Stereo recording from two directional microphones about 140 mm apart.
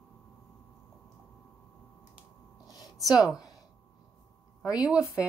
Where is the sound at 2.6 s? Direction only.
25° left (ahead or behind).